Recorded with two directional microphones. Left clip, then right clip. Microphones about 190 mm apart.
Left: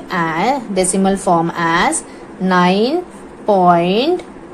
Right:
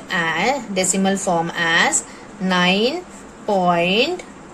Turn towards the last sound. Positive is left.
turn(degrees=15)  # may be behind; listen again after turning